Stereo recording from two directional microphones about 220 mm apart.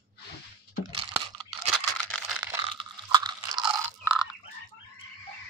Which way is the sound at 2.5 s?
20° right (ahead or behind).